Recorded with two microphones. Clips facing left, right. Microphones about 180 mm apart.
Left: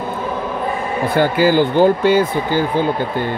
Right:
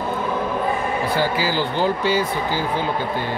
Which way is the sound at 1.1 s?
55° left (ahead or behind).